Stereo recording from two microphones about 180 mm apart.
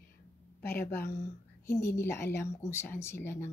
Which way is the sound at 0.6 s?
60° left (ahead or behind).